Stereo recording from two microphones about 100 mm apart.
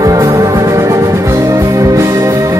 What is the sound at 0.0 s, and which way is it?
Music, 30° right (ahead or behind).